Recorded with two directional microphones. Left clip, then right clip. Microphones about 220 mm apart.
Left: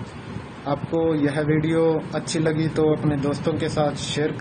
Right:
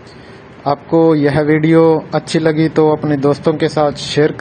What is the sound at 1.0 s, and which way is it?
A man's voice, 35° right (ahead or behind).